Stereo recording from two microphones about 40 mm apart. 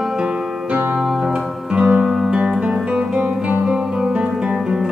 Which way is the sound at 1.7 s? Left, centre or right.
Right.